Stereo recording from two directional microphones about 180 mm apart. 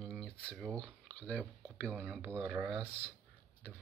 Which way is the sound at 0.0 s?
Centre (ahead or behind).